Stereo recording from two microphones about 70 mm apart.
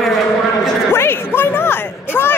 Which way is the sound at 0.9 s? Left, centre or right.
Left.